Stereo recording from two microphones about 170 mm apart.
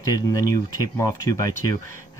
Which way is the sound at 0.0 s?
20° left (ahead or behind).